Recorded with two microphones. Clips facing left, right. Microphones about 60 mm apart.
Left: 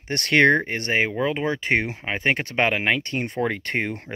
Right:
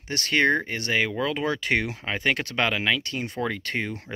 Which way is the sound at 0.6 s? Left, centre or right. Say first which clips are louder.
Left 2 dB; left.